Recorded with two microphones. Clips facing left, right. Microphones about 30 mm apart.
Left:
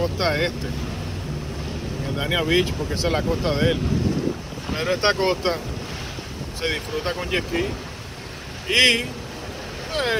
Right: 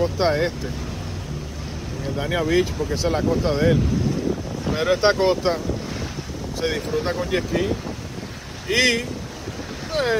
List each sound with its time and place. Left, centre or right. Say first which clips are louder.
0.0 s speech: right 2 dB; centre
2.1 s speech: even; left
6.6 s speech: right 2 dB; left